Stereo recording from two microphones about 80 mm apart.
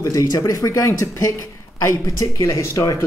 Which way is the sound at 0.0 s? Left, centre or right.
Left.